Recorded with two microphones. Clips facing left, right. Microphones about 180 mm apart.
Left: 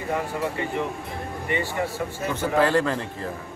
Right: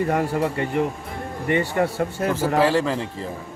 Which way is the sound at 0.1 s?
50° right (ahead or behind).